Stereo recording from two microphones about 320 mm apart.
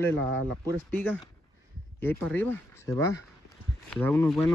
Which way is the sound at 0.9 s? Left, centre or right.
Centre.